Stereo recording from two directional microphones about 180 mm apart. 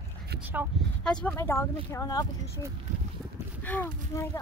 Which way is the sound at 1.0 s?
5° left (ahead or behind).